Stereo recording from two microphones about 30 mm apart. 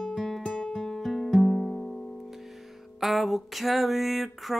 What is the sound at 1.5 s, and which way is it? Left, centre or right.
Music, left.